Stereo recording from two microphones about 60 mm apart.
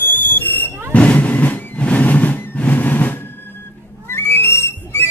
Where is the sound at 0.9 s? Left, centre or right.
Left.